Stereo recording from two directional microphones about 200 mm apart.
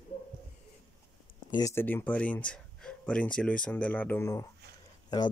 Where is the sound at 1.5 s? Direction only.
15° left (ahead or behind).